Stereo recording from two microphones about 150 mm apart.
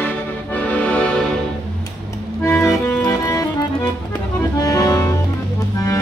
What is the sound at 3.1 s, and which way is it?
Music, 25° left (ahead or behind).